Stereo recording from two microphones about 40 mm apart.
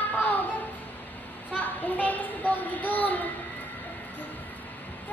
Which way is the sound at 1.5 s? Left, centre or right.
Left.